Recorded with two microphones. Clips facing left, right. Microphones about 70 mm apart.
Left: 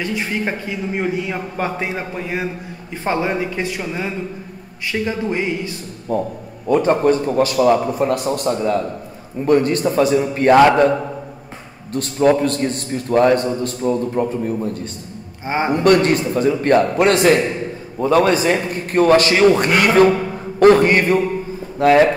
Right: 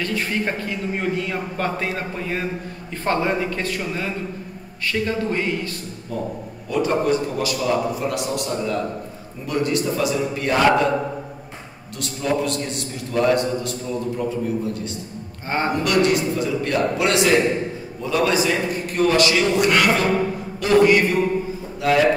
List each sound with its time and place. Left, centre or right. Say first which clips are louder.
0.0 s a man's voice: left 2 dB; centre
6.1 s a man's voice: left 6 dB; left
11.9 s a man's voice: left 9 dB; left
15.4 s speech: left 3 dB; centre
15.7 s a man's voice: left 6 dB; left